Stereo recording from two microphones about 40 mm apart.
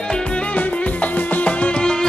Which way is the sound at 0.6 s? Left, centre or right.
Left.